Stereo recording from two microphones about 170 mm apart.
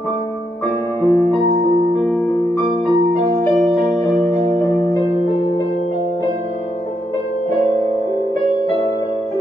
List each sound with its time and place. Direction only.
1.0 s music: 20° left (ahead or behind)